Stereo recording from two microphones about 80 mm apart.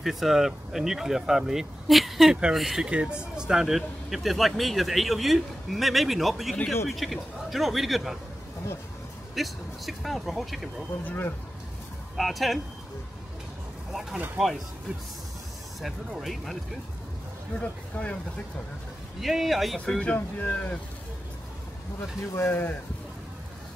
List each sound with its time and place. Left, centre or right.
0.0 s speech: centre
9.3 s speech: centre
11.1 s speech: left
12.2 s speech: centre
14.4 s speech: centre
15.8 s speech: centre
17.6 s speech: centre
19.2 s speech: centre
19.8 s speech: centre
22.3 s speech: left